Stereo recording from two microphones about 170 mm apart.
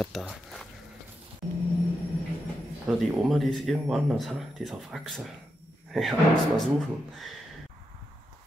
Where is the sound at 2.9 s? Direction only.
Centre (ahead or behind).